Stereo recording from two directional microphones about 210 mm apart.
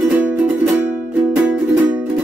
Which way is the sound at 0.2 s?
10° right (ahead or behind).